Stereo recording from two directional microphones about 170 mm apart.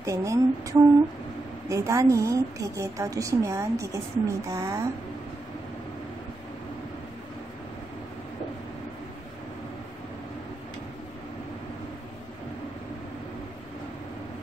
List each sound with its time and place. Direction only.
0.0 s a woman's voice: 20° right (ahead or behind)